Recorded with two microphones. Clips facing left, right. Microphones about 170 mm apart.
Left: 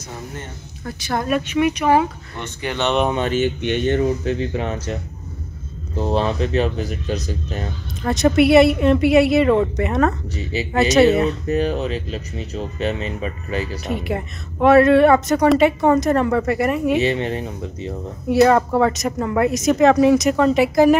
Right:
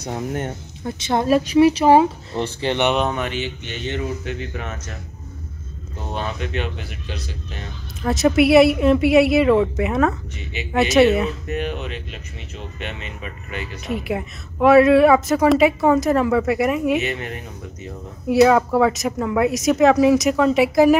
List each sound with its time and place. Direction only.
0.0 s speech: 60° right (ahead or behind)
0.8 s speech: 20° right (ahead or behind)
3.2 s speech: 45° left (ahead or behind)
4.2 s speech: 35° left (ahead or behind)
5.9 s speech: 30° left (ahead or behind)
8.0 s speech: centre (ahead or behind)
10.3 s speech: 35° left (ahead or behind)
10.7 s speech: centre (ahead or behind)
11.4 s speech: 35° left (ahead or behind)
13.8 s speech: centre (ahead or behind)
17.0 s speech: 30° left (ahead or behind)
18.3 s speech: centre (ahead or behind)